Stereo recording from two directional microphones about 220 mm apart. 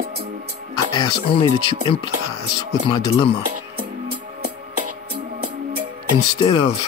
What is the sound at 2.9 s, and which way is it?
Speech, 20° left (ahead or behind).